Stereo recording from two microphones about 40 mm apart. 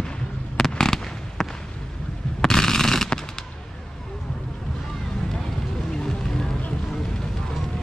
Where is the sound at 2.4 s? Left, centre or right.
Centre.